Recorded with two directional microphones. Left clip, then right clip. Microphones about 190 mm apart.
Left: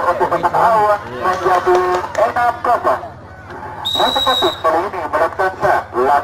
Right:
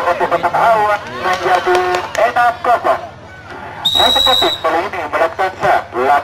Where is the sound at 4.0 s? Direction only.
25° right (ahead or behind).